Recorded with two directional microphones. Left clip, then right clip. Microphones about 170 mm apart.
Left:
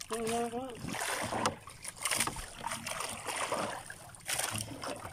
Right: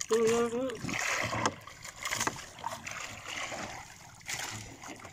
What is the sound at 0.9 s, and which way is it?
Boat, 20° left (ahead or behind).